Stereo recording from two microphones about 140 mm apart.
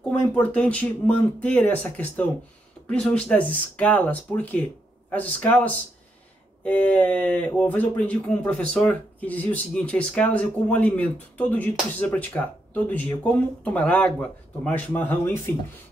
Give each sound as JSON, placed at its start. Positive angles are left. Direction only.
{"t": 0.4, "sound": "speech", "side_deg": 10}